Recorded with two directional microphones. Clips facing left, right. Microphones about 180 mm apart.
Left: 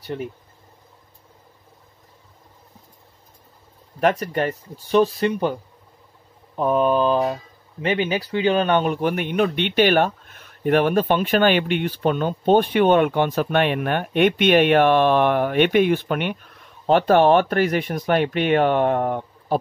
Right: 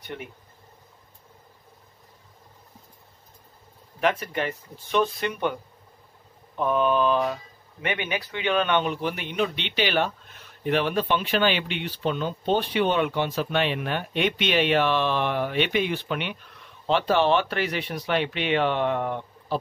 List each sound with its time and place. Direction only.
0.0 s speech: 35° left (ahead or behind)
4.0 s a man's voice: 40° left (ahead or behind)